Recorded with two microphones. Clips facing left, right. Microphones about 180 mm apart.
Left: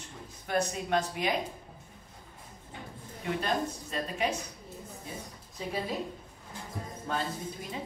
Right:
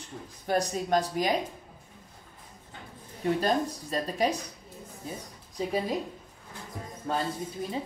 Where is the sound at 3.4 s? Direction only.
35° right (ahead or behind).